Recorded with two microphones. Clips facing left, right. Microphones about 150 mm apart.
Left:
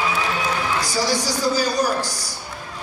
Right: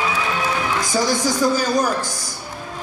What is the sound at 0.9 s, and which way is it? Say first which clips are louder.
Speech: right 5 dB; 50° right (ahead or behind).